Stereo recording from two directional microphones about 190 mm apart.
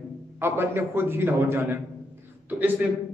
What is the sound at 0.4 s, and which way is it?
A man's voice, 10° right (ahead or behind).